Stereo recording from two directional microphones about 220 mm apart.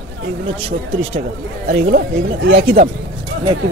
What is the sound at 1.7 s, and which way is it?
Speech, 45° right (ahead or behind).